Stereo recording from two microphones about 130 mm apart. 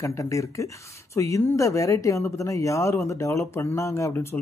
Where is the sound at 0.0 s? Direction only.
25° left (ahead or behind).